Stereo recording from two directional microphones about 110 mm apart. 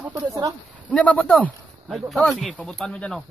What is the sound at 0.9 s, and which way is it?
Speech, 10° left (ahead or behind).